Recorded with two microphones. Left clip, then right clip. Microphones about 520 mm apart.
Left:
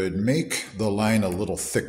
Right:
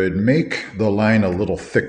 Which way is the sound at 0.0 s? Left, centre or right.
Left.